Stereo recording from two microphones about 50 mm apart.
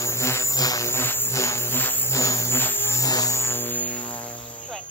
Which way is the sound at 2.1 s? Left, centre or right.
Left.